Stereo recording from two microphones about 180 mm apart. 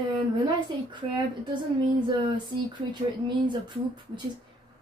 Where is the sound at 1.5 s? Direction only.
25° right (ahead or behind).